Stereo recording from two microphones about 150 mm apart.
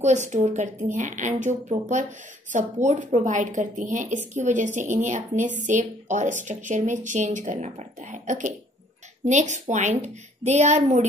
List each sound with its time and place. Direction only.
0.0 s a woman's voice: 50° right (ahead or behind)
2.5 s a woman's voice: 50° right (ahead or behind)